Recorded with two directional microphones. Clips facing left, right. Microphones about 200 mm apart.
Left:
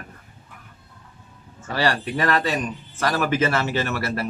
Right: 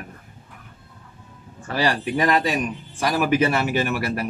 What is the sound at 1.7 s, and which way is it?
Speech, 15° right (ahead or behind).